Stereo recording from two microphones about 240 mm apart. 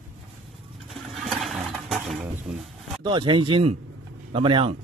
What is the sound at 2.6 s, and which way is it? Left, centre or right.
A man's voice, centre.